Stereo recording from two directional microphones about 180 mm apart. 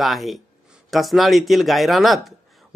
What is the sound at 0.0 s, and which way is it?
Speech, centre (ahead or behind).